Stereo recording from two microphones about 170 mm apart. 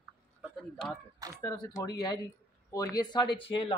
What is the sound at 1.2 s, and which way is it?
Speech, 20° right (ahead or behind).